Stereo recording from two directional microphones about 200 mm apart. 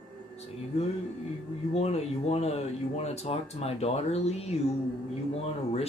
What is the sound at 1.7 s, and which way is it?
Speech, 30° left (ahead or behind).